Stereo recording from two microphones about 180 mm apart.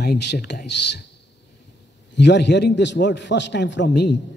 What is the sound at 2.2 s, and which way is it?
A man's voice, 70° left (ahead or behind).